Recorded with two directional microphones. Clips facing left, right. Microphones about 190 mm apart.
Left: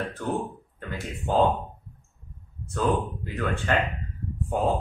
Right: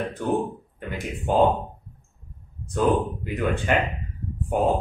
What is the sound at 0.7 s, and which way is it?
Speech, 15° right (ahead or behind).